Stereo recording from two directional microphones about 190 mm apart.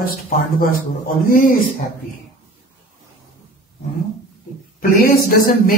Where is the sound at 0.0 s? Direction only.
50° left (ahead or behind).